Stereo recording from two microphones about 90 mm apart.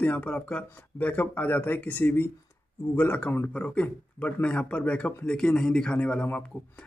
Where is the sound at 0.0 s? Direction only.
20° left (ahead or behind).